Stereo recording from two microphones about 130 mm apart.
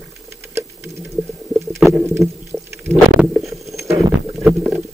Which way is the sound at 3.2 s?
5° right (ahead or behind).